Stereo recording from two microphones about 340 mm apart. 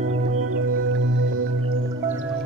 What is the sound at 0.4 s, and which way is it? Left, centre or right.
Music, right.